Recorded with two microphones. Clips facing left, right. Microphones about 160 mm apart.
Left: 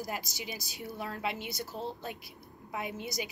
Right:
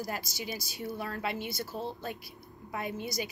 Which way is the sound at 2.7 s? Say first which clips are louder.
Right 2 dB; 15° left (ahead or behind).